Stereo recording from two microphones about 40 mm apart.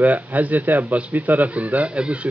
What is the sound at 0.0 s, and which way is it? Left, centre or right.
Speech, right.